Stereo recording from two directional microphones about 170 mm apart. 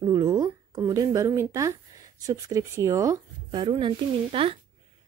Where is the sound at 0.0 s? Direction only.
20° right (ahead or behind).